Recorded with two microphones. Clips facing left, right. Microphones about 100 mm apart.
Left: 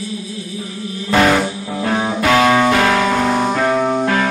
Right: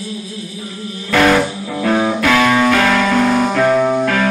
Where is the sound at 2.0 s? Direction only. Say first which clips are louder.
Left 1 dB; 25° left (ahead or behind).